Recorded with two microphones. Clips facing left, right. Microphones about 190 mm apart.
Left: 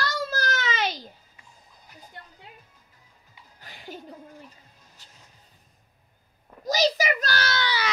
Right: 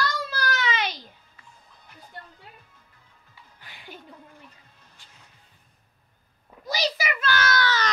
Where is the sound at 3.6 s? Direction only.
40° left (ahead or behind).